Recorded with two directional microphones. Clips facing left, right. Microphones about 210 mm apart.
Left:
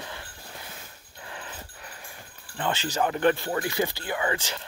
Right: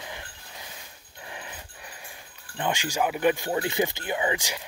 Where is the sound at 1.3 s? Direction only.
15° right (ahead or behind).